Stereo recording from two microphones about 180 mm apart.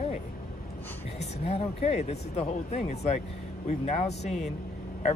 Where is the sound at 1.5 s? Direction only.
35° left (ahead or behind).